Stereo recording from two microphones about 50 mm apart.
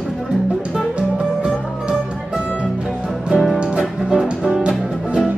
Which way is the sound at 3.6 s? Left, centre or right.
Centre.